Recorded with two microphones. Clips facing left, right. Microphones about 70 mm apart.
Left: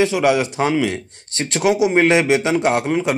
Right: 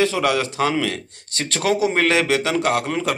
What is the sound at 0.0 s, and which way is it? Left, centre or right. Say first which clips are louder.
Speech: left 3 dB; left.